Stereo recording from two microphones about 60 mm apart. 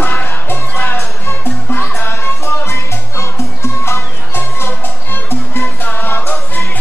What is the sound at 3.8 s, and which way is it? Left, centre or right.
Music, left.